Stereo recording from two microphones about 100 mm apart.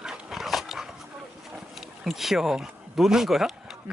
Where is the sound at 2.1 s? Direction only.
5° right (ahead or behind).